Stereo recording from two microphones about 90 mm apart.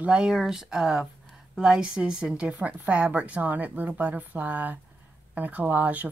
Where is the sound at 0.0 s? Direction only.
10° right (ahead or behind).